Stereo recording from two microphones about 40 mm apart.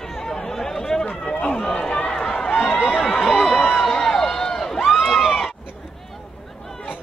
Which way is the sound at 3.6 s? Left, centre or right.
Centre.